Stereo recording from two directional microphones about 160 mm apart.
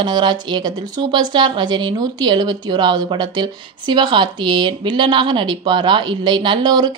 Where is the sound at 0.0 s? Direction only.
30° right (ahead or behind).